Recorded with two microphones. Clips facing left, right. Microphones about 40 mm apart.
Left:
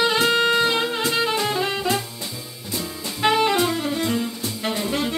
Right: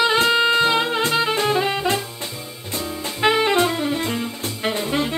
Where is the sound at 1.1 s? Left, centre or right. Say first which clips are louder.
Right 3 dB; centre.